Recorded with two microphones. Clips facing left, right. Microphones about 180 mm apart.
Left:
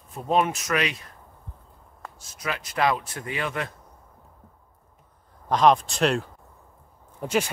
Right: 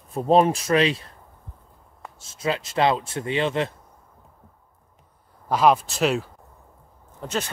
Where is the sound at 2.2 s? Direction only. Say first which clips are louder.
Right 6 dB; 25° right (ahead or behind).